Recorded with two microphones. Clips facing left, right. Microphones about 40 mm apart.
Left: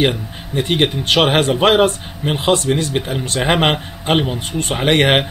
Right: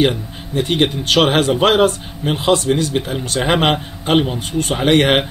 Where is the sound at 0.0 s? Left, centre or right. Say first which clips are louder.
Right 1 dB; centre.